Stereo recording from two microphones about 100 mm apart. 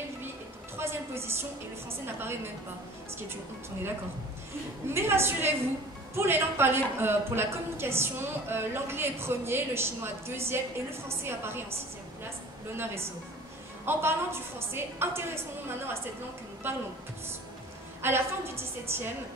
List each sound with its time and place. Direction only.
0.7 s a sound: 25° right (ahead or behind)
2.1 s a woman's voice: 25° right (ahead or behind)
4.8 s a woman's voice: 25° right (ahead or behind)
12.7 s a woman's voice: 25° right (ahead or behind)
16.6 s a woman's voice: 25° right (ahead or behind)
18.0 s a woman's voice: 25° right (ahead or behind)